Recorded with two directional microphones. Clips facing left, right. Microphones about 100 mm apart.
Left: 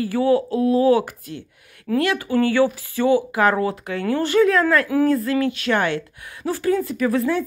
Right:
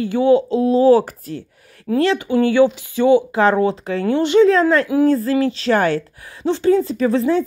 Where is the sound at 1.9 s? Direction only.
25° right (ahead or behind).